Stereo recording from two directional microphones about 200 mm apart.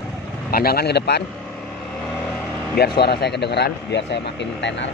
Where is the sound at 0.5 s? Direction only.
50° left (ahead or behind).